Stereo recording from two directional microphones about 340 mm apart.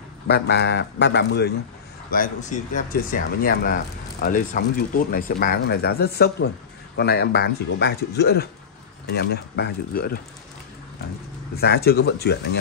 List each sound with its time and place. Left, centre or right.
0.3 s speech: left
11.5 s speech: left